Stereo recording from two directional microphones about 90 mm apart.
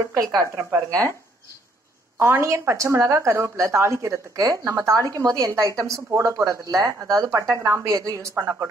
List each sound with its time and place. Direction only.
0.1 s speech: 40° right (ahead or behind)
2.1 s speech: 30° right (ahead or behind)